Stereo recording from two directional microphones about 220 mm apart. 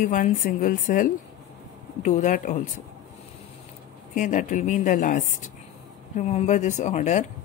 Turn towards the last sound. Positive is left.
turn(degrees=35)  # may be behind; listen again after turning